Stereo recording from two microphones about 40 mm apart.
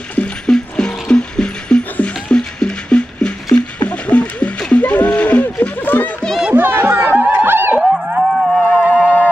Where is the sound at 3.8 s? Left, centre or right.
Left.